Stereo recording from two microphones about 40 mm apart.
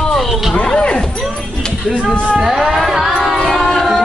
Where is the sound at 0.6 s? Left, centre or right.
Left.